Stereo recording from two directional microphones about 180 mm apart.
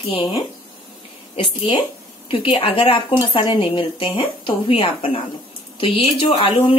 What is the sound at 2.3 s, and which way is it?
Speech, 30° left (ahead or behind).